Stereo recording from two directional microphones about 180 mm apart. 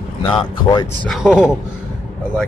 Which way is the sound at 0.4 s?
25° left (ahead or behind).